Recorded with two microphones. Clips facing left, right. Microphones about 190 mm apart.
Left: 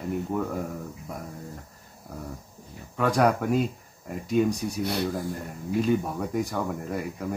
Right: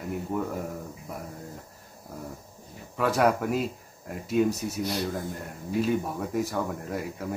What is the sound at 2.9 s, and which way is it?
Speech, 5° right (ahead or behind).